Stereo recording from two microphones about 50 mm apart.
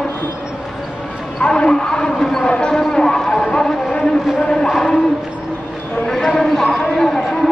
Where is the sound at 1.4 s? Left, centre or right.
Centre.